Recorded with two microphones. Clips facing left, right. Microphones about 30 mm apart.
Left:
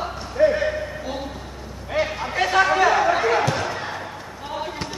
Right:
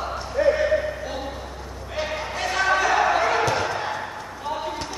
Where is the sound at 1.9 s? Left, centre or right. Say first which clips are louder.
Left 4 dB; centre.